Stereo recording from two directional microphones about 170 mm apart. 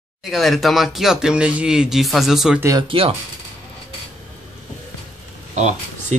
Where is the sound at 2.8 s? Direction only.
30° right (ahead or behind).